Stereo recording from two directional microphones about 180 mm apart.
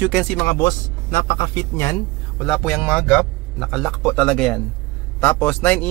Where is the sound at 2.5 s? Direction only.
5° left (ahead or behind).